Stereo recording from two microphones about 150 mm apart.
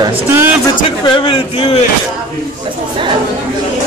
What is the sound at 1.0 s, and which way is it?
Speech, 35° left (ahead or behind).